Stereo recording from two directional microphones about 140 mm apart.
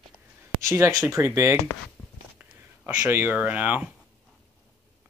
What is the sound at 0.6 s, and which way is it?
Speech, 20° right (ahead or behind).